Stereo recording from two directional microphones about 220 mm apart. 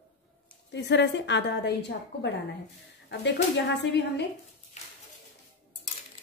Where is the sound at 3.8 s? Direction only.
50° left (ahead or behind).